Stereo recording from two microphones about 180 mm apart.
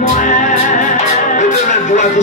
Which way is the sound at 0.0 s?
45° left (ahead or behind).